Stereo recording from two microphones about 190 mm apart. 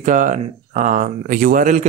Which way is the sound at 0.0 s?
40° right (ahead or behind).